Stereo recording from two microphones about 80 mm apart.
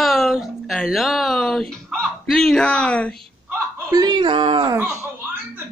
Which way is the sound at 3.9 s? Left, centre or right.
Right.